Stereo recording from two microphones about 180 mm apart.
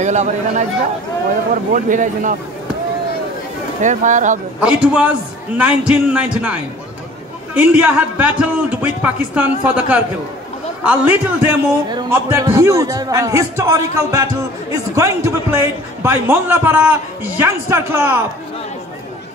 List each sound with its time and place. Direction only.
0.0 s a man's voice: 40° right (ahead or behind)
3.8 s a man's voice: 45° right (ahead or behind)
4.6 s a man's voice: 5° right (ahead or behind)